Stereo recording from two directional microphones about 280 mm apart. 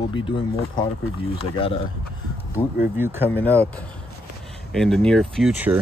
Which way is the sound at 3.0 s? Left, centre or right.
Centre.